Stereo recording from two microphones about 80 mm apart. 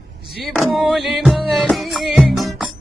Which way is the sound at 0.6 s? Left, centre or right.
Centre.